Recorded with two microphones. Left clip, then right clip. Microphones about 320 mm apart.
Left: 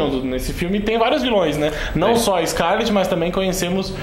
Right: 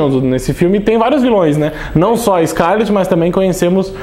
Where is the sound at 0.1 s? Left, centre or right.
Right.